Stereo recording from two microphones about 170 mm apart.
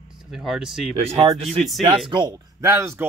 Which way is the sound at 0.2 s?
Centre (ahead or behind).